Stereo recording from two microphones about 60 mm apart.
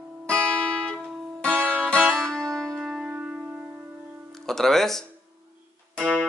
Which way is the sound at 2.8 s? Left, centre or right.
Centre.